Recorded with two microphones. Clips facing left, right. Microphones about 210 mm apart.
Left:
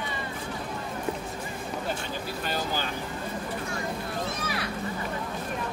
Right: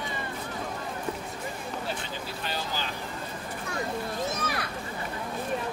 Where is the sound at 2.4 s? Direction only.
45° left (ahead or behind).